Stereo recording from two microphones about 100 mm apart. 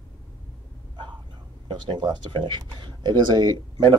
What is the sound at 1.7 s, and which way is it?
Speech, 50° right (ahead or behind).